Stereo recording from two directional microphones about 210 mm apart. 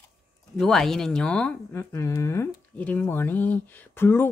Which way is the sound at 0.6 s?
Centre (ahead or behind).